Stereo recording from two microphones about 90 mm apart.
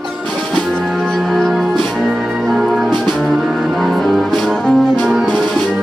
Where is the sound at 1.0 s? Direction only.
Centre (ahead or behind).